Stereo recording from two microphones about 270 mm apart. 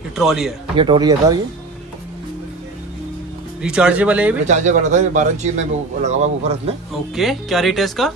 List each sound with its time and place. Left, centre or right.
0.1 s a man's voice: centre
0.7 s speech: centre
3.6 s speech: centre
4.5 s speech: right
7.2 s speech: centre